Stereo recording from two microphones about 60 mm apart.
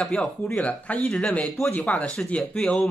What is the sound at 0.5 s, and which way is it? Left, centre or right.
Speech, left.